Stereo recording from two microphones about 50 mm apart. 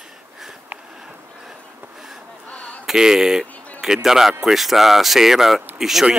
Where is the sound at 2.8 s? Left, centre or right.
Centre.